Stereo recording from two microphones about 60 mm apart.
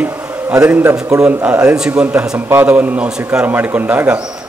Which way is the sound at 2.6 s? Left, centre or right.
Right.